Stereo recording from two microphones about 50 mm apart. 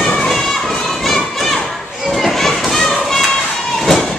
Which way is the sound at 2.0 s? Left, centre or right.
Centre.